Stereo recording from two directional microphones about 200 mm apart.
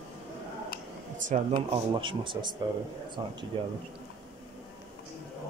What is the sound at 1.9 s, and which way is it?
Speech, 25° right (ahead or behind).